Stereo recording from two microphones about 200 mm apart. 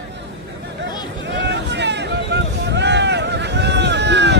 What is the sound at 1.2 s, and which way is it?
Vehicle, 60° right (ahead or behind).